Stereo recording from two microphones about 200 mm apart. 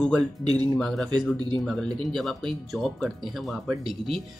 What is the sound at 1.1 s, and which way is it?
Speech, 20° right (ahead or behind).